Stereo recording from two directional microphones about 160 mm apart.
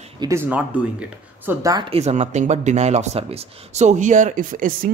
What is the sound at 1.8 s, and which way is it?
Speech, 40° right (ahead or behind).